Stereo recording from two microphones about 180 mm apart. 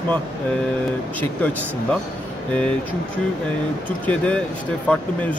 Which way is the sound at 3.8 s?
10° left (ahead or behind).